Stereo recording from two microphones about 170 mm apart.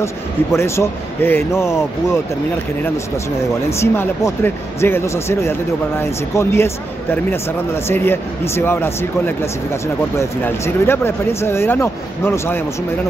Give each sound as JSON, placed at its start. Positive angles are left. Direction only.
{"t": 0.0, "sound": "speech", "side_deg": 15}
{"t": 3.8, "sound": "speech", "side_deg": 15}
{"t": 7.9, "sound": "speech", "side_deg": 15}